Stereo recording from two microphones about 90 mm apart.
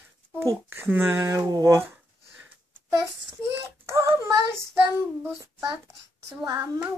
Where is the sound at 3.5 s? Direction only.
30° right (ahead or behind).